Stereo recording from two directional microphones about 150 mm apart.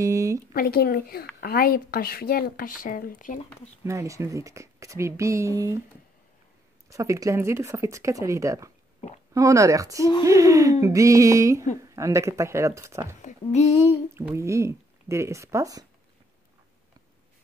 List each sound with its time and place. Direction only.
0.0 s a sound: 20° right (ahead or behind)
0.5 s a woman's voice: 80° left; by 3.3 s 65° left (ahead or behind)
3.8 s speech: 20° right (ahead or behind)
6.9 s speech: 20° right (ahead or behind)
13.2 s speech: 50° left (ahead or behind)
14.3 s speech: 20° right (ahead or behind)